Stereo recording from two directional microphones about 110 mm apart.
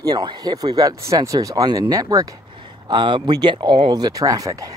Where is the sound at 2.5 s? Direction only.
45° right (ahead or behind).